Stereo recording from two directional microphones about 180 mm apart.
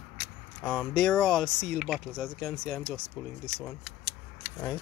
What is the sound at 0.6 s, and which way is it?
Speech, 5° left (ahead or behind).